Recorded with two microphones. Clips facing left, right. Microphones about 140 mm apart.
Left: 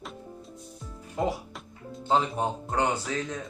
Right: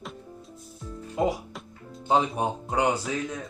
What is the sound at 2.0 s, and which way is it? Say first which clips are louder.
Speech: right 2 dB; 15° right (ahead or behind).